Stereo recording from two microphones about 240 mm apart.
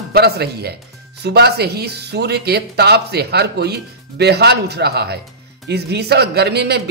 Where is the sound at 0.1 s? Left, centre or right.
Right.